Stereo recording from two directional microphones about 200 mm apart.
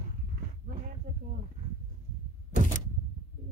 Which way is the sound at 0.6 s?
40° right (ahead or behind).